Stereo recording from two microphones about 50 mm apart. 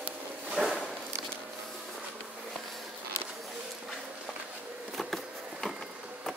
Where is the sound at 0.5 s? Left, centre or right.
Centre.